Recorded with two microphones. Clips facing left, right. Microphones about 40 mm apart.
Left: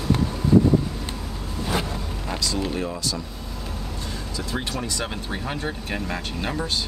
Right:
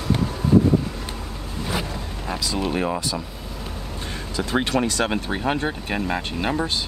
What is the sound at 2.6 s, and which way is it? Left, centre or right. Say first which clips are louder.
Speech: right 3 dB; right.